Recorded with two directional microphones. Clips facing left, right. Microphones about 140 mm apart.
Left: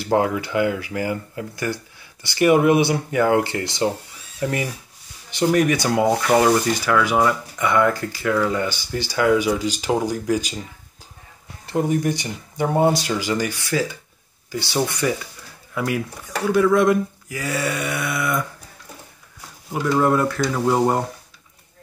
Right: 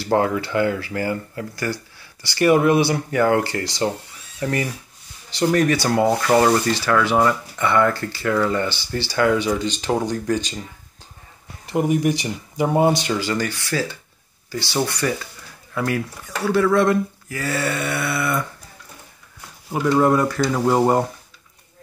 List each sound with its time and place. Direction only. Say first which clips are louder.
0.0 s speech: even; 15° left (ahead or behind)
5.9 s speech: even; 5° left (ahead or behind)
11.6 s speech: right 1 dB; 10° right (ahead or behind)
13.2 s speech: even; 15° left (ahead or behind)
15.7 s speech: right 1 dB; 10° left (ahead or behind)
19.7 s speech: right 2 dB; 5° right (ahead or behind)